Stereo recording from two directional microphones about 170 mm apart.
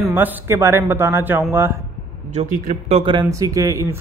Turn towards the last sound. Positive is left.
turn(degrees=-20)  # may be behind; listen again after turning